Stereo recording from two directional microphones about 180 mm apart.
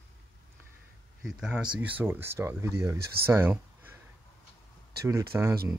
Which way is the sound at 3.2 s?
10° right (ahead or behind).